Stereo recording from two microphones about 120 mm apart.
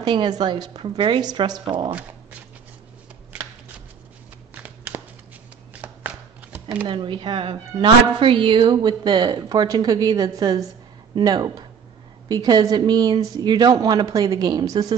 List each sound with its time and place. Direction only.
0.0 s a woman's voice: 40° right (ahead or behind)
4.6 s a sound: 15° right (ahead or behind)
5.8 s shuffling cards: 15° right (ahead or behind)
6.9 s a woman's voice: 45° right (ahead or behind)